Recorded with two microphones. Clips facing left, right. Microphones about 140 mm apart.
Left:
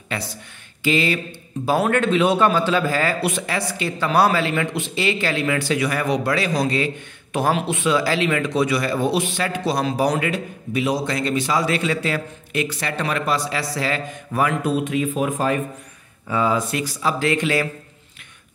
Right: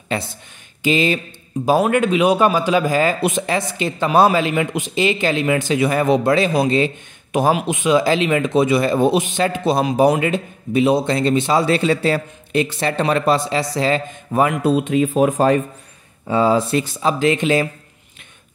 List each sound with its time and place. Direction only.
0.1 s speech: 25° right (ahead or behind)